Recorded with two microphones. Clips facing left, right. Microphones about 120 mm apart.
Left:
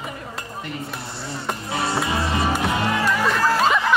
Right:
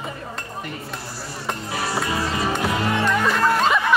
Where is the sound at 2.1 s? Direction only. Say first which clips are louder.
Left 1 dB; 25° left (ahead or behind).